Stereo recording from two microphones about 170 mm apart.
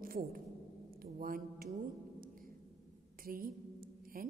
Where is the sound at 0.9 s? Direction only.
55° right (ahead or behind).